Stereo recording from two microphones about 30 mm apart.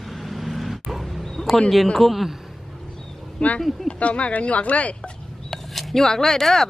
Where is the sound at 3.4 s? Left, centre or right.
Left.